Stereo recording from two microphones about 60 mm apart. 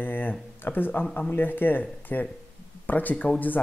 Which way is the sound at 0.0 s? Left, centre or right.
Left.